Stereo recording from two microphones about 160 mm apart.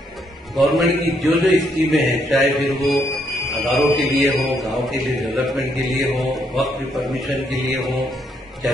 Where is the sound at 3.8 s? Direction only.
Centre (ahead or behind).